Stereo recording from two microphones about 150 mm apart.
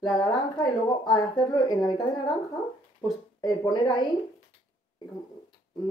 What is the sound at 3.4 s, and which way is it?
Speech, 30° left (ahead or behind).